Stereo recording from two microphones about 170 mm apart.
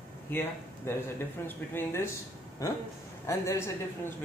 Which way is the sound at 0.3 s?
15° left (ahead or behind).